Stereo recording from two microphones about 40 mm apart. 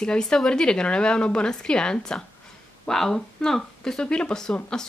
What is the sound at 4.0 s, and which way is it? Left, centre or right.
Speech, left.